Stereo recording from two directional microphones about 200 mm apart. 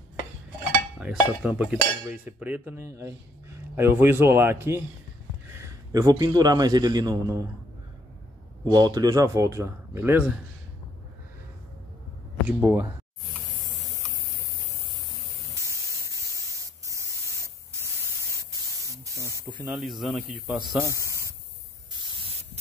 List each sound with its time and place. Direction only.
0.9 s cutlery: 5° right (ahead or behind)
5.5 s a man's voice: 15° right (ahead or behind)
8.7 s cutlery: 20° right (ahead or behind)
12.4 s cutlery: 10° right (ahead or behind)
19.1 s spray: 15° right (ahead or behind)
19.7 s speech: centre (ahead or behind)
20.7 s cutlery: 15° right (ahead or behind)